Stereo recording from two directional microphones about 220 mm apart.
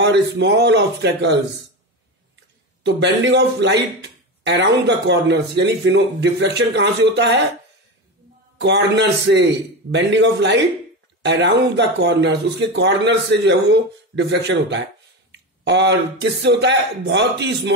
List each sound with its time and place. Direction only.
0.0 s speech: 50° right (ahead or behind)
2.8 s speech: 50° right (ahead or behind)
8.5 s speech: 50° right (ahead or behind)